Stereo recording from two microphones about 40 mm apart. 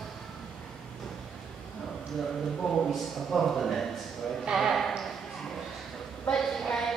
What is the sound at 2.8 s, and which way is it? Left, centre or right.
A man's voice, centre.